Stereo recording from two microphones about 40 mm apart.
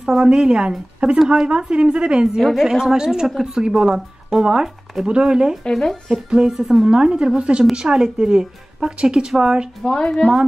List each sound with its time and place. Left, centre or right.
0.0 s a woman's voice: centre
2.5 s a woman's voice: centre
5.6 s speech: centre
6.5 s speech: centre
6.9 s a woman's voice: right
7.7 s a woman's voice: centre
9.8 s a woman's voice: left